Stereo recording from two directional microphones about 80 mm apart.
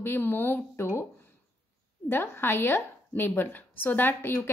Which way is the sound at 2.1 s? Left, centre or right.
Left.